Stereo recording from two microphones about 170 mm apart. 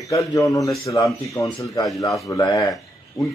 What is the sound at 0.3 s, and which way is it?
Speech, 20° left (ahead or behind).